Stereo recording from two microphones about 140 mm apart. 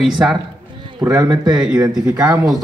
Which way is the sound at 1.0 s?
25° right (ahead or behind).